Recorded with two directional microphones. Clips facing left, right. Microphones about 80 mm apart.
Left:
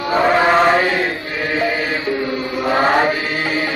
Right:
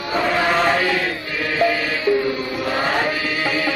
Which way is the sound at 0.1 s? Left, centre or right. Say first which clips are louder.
Left 5 dB; left.